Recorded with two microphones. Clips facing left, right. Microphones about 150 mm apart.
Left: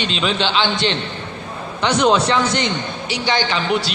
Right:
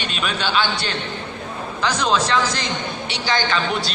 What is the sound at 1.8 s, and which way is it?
Speech, 30° left (ahead or behind).